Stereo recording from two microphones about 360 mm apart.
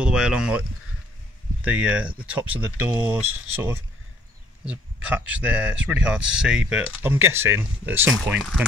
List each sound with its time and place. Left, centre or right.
0.0 s speech: centre